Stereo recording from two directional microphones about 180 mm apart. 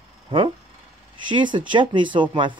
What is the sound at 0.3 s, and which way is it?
Speech, 30° right (ahead or behind).